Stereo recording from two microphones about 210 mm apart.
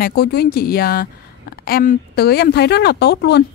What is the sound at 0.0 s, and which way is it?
Speech, 50° left (ahead or behind).